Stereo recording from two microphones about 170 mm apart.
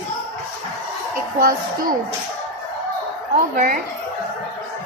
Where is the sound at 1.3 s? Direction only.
55° right (ahead or behind).